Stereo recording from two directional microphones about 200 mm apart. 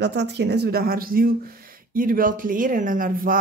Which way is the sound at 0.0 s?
55° right (ahead or behind).